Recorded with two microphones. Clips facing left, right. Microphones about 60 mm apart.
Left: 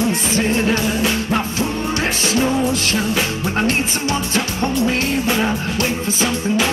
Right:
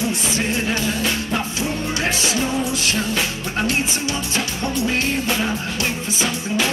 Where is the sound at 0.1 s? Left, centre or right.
Left.